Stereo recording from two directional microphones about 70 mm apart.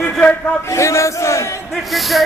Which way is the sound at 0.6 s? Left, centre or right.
Left.